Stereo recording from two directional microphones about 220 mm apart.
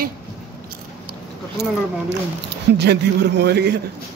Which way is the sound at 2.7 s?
50° right (ahead or behind).